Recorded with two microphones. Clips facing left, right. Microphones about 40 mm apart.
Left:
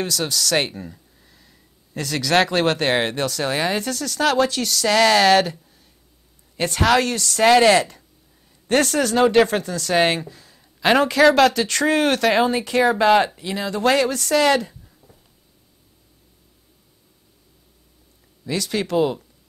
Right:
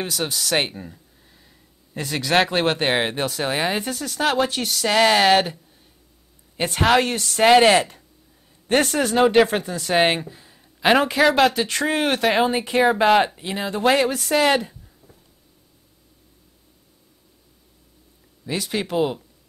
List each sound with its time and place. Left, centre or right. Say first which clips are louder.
0.0 s speech: left 2 dB; centre
2.0 s speech: left 1 dB; centre
13.4 s speech: even; right
18.4 s speech: left 2 dB; centre